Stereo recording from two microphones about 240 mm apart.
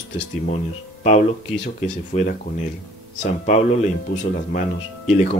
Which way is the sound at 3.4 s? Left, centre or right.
Left.